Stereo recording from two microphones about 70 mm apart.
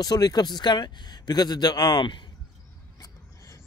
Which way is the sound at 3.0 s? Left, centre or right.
Left.